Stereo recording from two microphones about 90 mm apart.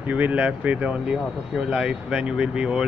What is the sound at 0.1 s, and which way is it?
Speech, 15° right (ahead or behind).